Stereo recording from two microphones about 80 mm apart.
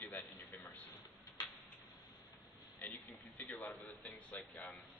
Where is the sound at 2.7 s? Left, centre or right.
Left.